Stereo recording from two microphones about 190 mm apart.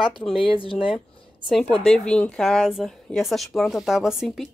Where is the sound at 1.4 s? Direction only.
5° left (ahead or behind).